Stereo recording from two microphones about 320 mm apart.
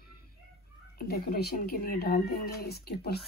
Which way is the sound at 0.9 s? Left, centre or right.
Left.